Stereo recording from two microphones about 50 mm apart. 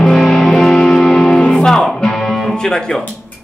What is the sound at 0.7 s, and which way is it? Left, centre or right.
Music, centre.